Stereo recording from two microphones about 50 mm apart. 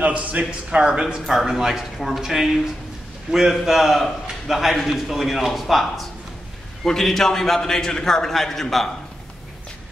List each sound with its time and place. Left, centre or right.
0.0 s a man's voice: right
1.2 s a man's voice: centre